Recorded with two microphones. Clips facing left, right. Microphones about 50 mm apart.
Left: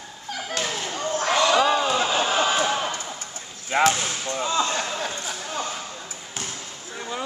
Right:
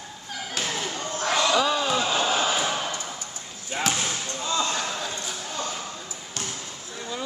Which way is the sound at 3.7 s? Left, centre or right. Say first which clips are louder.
Left 9 dB; left.